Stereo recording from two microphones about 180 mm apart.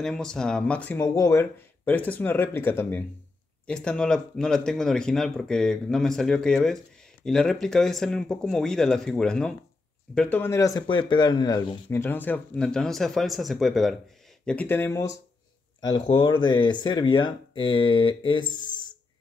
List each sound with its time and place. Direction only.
0.0 s speech: 5° left (ahead or behind)
10.9 s speech: 25° left (ahead or behind)
15.8 s speech: 25° left (ahead or behind)